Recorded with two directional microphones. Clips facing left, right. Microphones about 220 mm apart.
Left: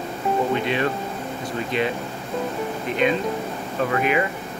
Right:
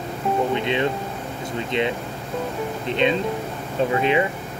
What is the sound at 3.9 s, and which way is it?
Speech, 25° right (ahead or behind).